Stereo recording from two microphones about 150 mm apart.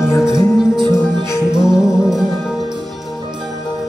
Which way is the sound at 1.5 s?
5° right (ahead or behind).